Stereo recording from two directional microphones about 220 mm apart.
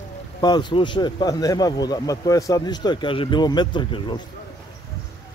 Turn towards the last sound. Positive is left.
turn(degrees=20)  # may be behind; listen again after turning